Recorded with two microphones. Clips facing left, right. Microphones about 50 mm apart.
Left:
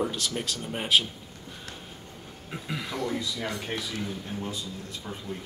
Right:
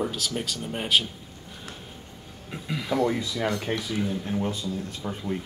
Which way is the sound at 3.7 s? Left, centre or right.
Centre.